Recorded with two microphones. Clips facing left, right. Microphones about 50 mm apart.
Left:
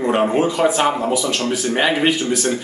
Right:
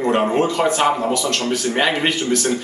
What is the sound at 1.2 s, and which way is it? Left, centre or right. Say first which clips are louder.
Speech: even; centre.